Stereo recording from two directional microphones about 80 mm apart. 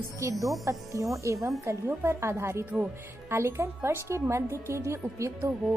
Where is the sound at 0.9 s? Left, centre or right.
Right.